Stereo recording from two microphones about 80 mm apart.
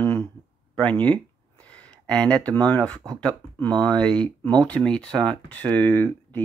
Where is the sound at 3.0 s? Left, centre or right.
Right.